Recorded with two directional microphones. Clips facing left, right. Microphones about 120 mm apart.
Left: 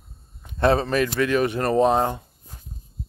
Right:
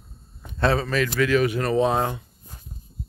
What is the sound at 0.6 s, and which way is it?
Speech, 25° left (ahead or behind).